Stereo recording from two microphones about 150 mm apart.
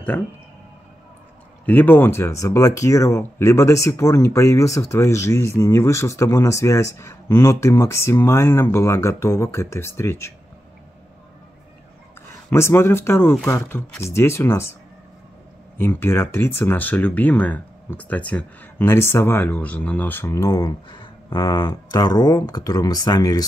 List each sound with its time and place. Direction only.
0.1 s speech: 10° left (ahead or behind)
1.7 s speech: 10° left (ahead or behind)
12.4 s speech: 15° left (ahead or behind)
15.8 s speech: 15° left (ahead or behind)